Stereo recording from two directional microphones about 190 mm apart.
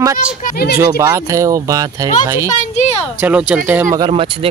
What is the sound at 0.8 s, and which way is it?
Speech, 15° right (ahead or behind).